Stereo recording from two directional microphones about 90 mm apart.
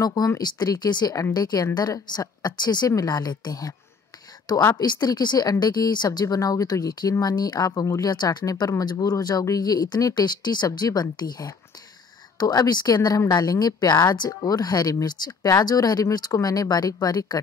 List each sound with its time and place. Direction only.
0.0 s a woman's voice: 40° left (ahead or behind)